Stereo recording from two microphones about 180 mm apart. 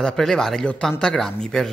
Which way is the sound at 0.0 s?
5° left (ahead or behind).